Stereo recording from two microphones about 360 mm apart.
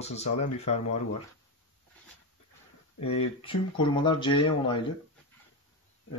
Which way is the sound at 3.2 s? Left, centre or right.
Centre.